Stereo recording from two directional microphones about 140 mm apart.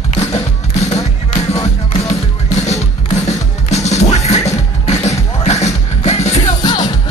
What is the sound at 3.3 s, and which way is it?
Music, 55° left (ahead or behind).